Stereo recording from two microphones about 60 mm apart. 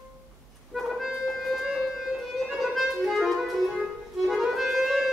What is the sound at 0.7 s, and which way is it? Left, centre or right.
Music, centre.